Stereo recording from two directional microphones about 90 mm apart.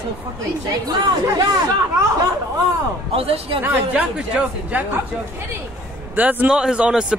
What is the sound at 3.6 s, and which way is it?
Speech, 15° right (ahead or behind).